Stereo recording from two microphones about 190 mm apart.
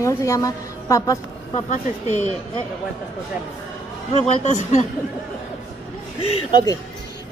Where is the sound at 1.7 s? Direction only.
40° left (ahead or behind).